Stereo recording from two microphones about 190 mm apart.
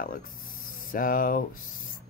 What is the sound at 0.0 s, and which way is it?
Speech, 45° left (ahead or behind).